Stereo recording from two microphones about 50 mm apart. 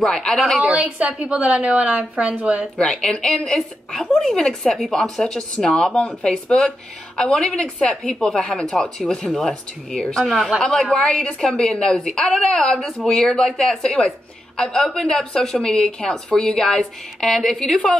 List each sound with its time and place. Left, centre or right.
0.0 s speech: centre
0.6 s a woman's voice: right
2.8 s speech: centre
3.4 s speech: centre
7.9 s a woman's voice: centre